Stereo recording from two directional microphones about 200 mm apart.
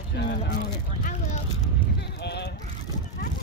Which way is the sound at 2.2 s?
55° left (ahead or behind).